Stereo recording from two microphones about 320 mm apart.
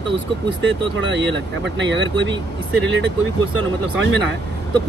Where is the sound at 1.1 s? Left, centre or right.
Right.